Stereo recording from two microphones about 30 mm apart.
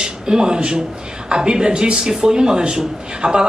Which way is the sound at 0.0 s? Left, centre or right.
Right.